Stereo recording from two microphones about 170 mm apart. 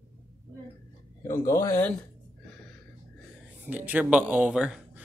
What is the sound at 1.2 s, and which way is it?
Speech, 15° left (ahead or behind).